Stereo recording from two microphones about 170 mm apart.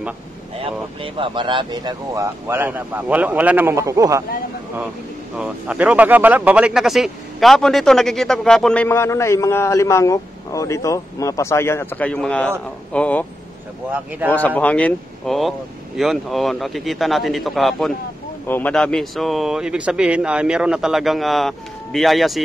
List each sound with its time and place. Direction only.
0.7 s speech: 30° right (ahead or behind)
5.4 s speech: 5° right (ahead or behind)
8.8 s a man's voice: 15° left (ahead or behind)
14.3 s a man's voice: 10° left (ahead or behind)